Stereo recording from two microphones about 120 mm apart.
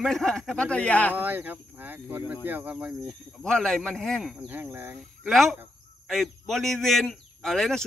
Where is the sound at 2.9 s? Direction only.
Centre (ahead or behind).